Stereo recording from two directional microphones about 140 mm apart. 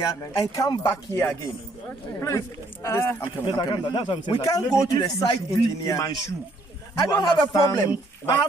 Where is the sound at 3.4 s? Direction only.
35° left (ahead or behind).